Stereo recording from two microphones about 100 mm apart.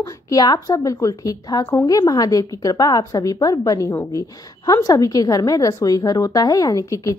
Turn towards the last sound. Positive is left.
turn(degrees=30)  # may be behind; listen again after turning